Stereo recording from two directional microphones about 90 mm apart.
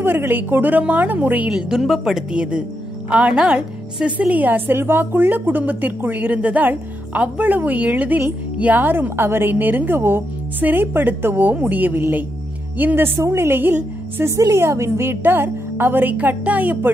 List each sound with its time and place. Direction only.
0.0 s a woman's voice: 25° right (ahead or behind)
1.5 s a woman's voice: 5° right (ahead or behind); by 16.9 s 20° right (ahead or behind)